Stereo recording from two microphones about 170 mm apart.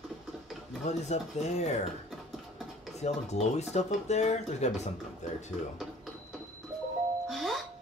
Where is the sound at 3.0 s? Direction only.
40° left (ahead or behind).